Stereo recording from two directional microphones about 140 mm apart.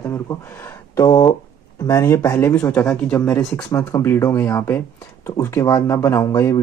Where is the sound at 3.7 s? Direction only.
20° left (ahead or behind).